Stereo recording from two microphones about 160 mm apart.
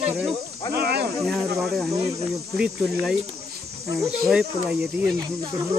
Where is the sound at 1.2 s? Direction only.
Centre (ahead or behind).